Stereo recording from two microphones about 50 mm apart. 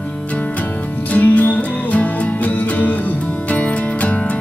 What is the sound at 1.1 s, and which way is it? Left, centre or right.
Music, left.